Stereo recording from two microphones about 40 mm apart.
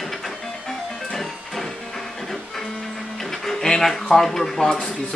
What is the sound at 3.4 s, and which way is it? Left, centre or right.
Speech, centre.